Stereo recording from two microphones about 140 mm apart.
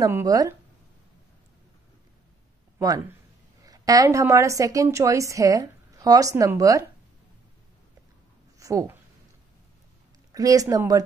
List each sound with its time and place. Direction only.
0.0 s a woman's voice: 25° right (ahead or behind)
3.6 s a woman's voice: 25° right (ahead or behind)
8.5 s a woman's voice: 25° right (ahead or behind)
10.3 s a woman's voice: 25° right (ahead or behind)